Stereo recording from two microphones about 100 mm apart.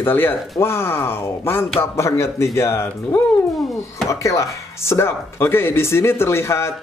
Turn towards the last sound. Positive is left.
turn(degrees=25)  # may be behind; listen again after turning